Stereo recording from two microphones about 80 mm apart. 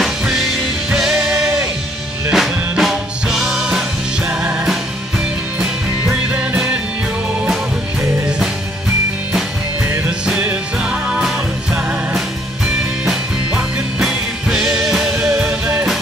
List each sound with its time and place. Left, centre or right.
0.0 s music: centre
5.6 s music: centre
10.4 s music: right
10.9 s music: centre
13.0 s music: centre